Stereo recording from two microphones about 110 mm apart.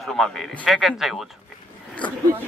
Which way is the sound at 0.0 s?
Centre (ahead or behind).